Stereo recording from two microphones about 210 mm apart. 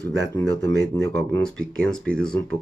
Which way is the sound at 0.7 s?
60° right (ahead or behind).